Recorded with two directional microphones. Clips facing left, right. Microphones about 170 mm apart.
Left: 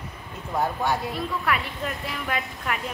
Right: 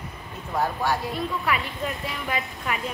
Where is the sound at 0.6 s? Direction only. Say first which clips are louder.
Even; 20° left (ahead or behind).